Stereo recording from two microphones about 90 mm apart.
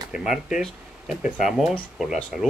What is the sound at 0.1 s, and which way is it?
Speech, 5° right (ahead or behind).